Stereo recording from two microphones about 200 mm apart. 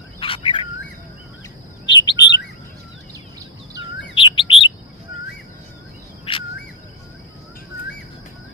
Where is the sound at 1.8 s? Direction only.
60° left (ahead or behind).